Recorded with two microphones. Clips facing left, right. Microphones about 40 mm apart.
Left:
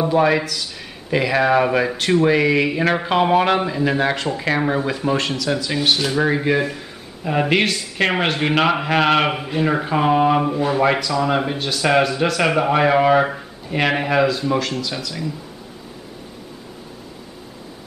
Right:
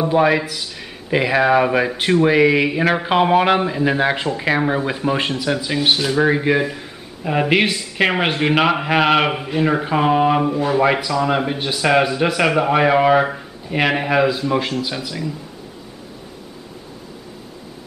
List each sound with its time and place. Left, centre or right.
0.1 s speech: centre
5.9 s a man's voice: centre